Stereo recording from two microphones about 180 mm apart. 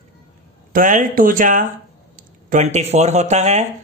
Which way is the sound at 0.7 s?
45° right (ahead or behind).